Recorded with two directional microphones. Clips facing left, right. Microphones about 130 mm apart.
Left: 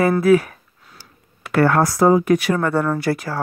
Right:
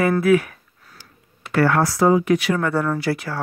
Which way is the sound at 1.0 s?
35° left (ahead or behind).